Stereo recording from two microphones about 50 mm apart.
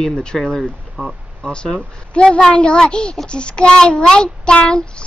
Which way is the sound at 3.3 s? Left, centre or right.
Left.